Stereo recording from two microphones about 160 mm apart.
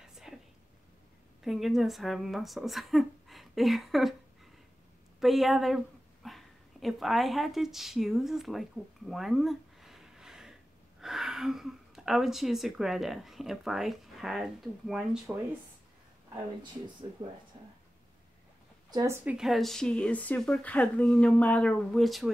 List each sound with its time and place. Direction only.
0.0 s a sound: centre (ahead or behind)
1.4 s speech: centre (ahead or behind)
5.2 s speech: centre (ahead or behind)
18.9 s a woman's voice: 20° right (ahead or behind)
19.2 s speech: 5° right (ahead or behind)